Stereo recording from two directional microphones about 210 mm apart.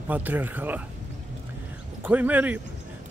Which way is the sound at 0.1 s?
10° right (ahead or behind).